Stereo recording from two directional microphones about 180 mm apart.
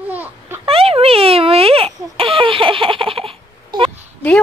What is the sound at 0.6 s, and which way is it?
Baby laughter, 35° right (ahead or behind).